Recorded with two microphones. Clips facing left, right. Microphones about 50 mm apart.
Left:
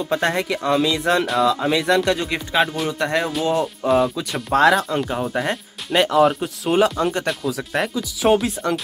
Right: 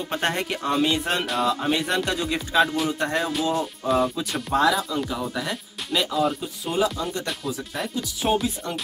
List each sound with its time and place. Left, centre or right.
0.1 s speech: left
2.9 s music: left
4.5 s speech: left
4.8 s speech: left
7.7 s speech: left